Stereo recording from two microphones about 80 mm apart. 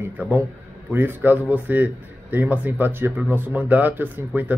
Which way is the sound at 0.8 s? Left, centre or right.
Right.